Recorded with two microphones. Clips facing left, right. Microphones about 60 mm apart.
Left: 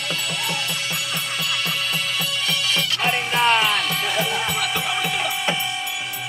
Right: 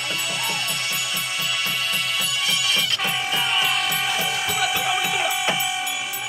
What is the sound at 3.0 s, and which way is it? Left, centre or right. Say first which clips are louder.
Music: left 4 dB; left.